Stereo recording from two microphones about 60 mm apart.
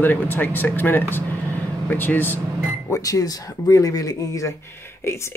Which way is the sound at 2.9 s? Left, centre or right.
Left.